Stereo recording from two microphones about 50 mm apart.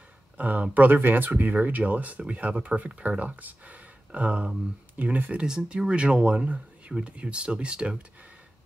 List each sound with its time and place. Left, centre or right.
0.4 s speech: right
0.9 s speech: right
5.4 s speech: centre